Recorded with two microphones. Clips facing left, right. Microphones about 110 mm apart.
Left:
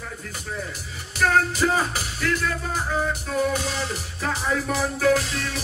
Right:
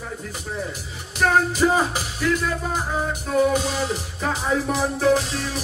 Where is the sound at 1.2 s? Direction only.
15° right (ahead or behind).